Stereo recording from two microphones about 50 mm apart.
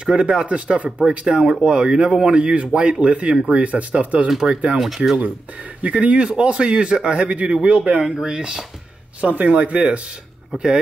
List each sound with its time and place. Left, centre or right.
0.0 s speech: centre
4.7 s speech: centre
5.8 s speech: right
9.2 s speech: right